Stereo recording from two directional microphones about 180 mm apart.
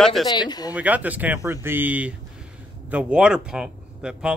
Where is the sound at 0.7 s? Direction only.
10° right (ahead or behind).